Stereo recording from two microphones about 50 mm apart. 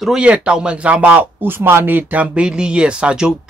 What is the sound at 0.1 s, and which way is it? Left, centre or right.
Speech, centre.